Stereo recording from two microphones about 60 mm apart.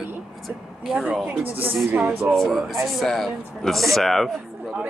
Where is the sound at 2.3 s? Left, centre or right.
Centre.